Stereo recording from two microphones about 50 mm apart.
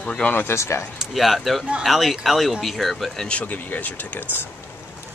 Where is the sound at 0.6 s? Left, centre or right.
Left.